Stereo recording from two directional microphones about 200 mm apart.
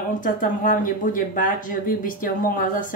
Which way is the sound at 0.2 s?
40° left (ahead or behind).